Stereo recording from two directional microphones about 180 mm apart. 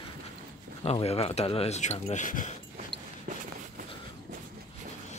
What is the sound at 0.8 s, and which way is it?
Speech, 35° left (ahead or behind).